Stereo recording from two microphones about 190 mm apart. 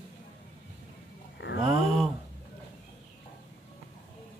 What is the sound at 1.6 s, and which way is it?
Speech, centre (ahead or behind).